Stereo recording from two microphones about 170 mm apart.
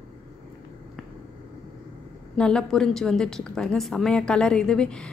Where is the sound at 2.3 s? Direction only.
5° left (ahead or behind).